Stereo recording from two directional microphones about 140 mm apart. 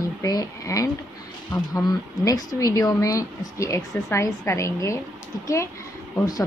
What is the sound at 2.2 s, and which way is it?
Speech, 25° left (ahead or behind).